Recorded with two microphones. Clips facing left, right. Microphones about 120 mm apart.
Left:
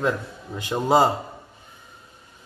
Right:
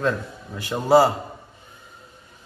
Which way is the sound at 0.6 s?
20° left (ahead or behind).